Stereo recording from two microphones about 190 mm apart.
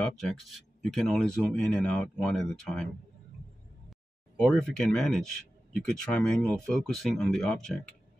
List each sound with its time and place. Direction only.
0.0 s speech: centre (ahead or behind)
4.4 s speech: 5° left (ahead or behind)